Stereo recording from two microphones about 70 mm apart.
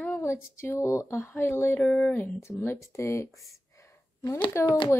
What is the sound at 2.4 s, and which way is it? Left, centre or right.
Speech, left.